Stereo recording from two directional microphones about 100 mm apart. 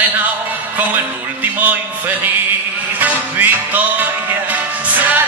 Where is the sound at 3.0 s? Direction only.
20° right (ahead or behind).